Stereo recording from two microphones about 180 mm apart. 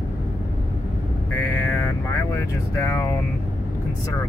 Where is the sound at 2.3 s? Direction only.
15° left (ahead or behind).